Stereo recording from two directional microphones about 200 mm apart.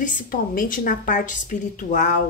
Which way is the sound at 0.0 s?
45° left (ahead or behind).